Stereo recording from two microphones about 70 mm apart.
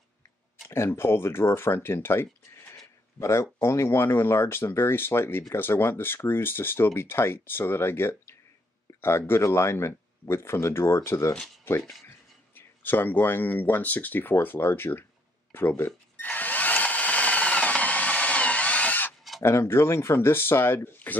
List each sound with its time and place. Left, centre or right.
0.7 s speech: left
11.7 s speech: left
15.5 s drill: left
19.4 s speech: left